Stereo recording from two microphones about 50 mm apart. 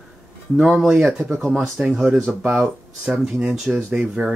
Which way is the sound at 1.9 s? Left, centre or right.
Centre.